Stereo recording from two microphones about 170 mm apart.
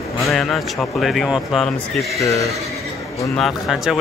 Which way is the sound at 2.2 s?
20° left (ahead or behind).